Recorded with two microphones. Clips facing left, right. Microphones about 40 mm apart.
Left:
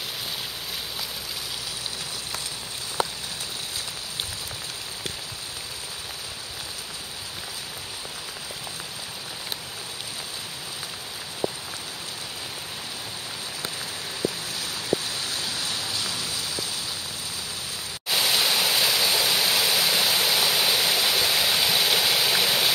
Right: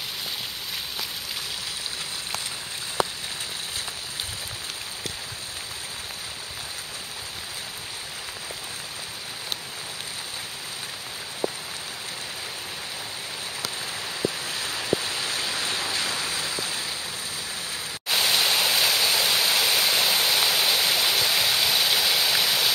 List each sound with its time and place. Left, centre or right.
14.5 s waves: right
18.1 s stream: centre